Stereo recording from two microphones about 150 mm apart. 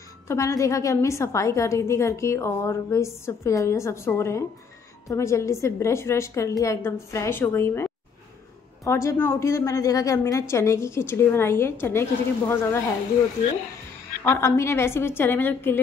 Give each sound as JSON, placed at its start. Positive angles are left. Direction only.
{"t": 0.3, "sound": "a woman's voice", "side_deg": 20}
{"t": 14.2, "sound": "a woman's voice", "side_deg": 20}